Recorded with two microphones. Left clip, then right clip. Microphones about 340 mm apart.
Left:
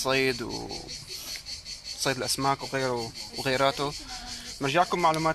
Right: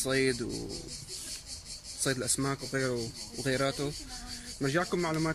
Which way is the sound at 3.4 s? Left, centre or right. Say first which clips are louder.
Left 5 dB; left.